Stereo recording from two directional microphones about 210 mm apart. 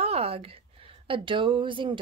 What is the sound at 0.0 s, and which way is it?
Speech, 30° right (ahead or behind).